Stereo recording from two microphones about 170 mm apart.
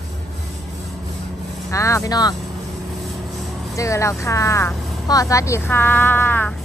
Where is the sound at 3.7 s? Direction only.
20° left (ahead or behind).